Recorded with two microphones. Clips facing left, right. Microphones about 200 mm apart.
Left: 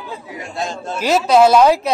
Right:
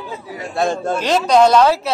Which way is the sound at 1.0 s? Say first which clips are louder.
Left 2 dB; 5° left (ahead or behind).